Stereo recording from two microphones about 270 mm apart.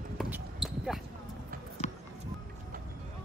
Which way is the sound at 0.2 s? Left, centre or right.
Centre.